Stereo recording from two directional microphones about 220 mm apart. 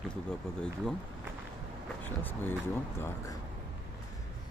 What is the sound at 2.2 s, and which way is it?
Speech, 10° left (ahead or behind).